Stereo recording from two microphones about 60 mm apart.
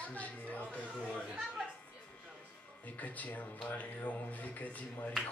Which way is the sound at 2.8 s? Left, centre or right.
Left.